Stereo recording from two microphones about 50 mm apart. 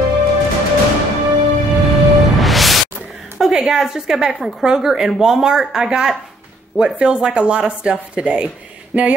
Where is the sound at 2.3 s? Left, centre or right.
Centre.